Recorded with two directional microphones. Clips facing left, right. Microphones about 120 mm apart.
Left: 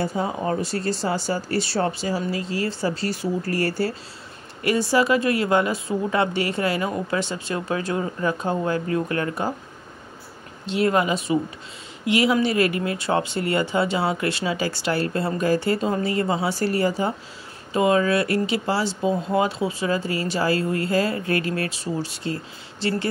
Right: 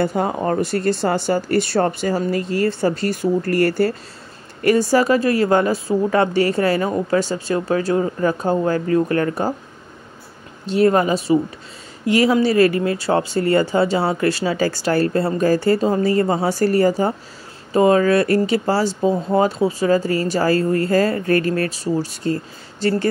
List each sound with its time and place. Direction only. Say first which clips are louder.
0.0 s speech: right 5 dB; 60° right (ahead or behind)
4.6 s speech: right 5 dB; 45° right (ahead or behind)
10.7 s speech: right 5 dB; 40° right (ahead or behind)